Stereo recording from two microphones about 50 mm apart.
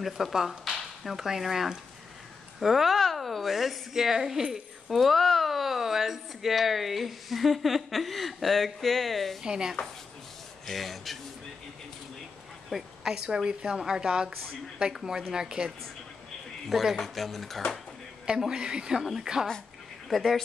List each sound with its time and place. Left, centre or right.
0.0 s speech: centre
9.4 s a woman's voice: centre
10.7 s speech: centre
12.6 s a sound: centre
13.1 s a woman's voice: centre
16.6 s speech: centre
18.2 s a woman's voice: centre
20.1 s speech: centre